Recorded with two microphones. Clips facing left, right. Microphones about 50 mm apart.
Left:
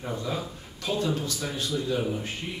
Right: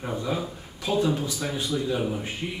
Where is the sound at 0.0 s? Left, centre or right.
Centre.